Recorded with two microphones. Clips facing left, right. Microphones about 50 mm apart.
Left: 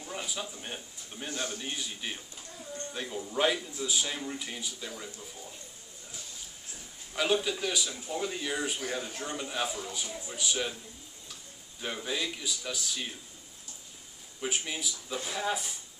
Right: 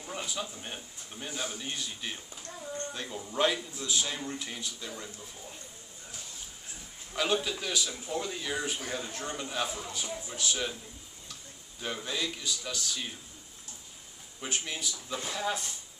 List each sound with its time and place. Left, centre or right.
0.1 s a man's voice: centre
1.3 s a man's voice: centre
1.6 s a man's voice: centre
7.2 s a man's voice: centre
11.8 s speech: centre
14.4 s a man's voice: centre